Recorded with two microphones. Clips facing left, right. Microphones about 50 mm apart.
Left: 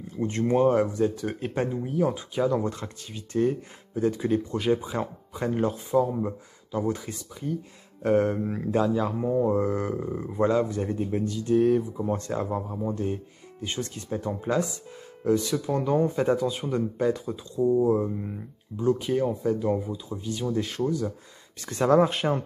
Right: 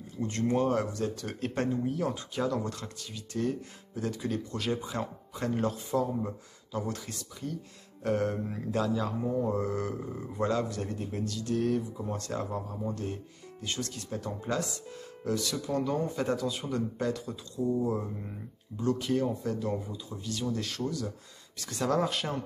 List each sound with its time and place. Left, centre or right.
0.2 s speech: left